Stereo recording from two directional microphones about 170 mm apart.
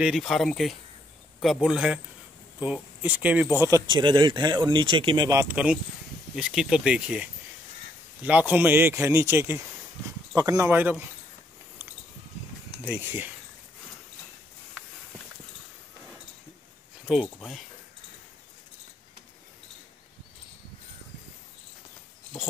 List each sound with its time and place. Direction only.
0.0 s speech: centre (ahead or behind)
12.9 s speech: 10° right (ahead or behind)
17.1 s speech: centre (ahead or behind)